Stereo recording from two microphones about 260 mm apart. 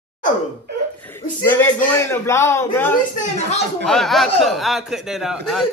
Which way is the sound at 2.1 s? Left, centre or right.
Centre.